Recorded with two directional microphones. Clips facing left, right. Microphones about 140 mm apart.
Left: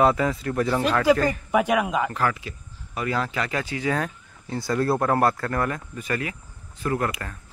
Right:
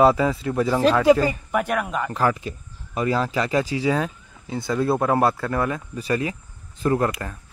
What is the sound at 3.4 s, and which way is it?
Speech, 15° right (ahead or behind).